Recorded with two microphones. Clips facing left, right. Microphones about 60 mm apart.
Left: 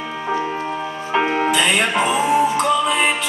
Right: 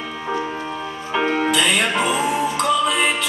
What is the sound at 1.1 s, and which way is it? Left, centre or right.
Music, centre.